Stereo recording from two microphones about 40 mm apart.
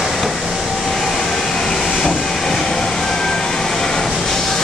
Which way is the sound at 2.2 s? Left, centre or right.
Centre.